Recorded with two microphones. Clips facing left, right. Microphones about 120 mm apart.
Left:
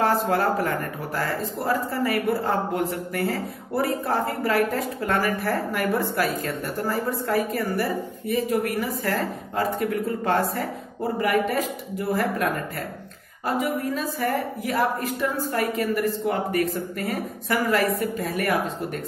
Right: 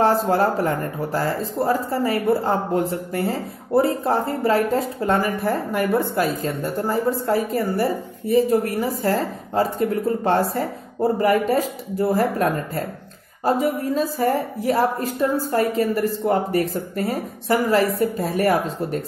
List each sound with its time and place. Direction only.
0.0 s a woman's voice: 30° right (ahead or behind)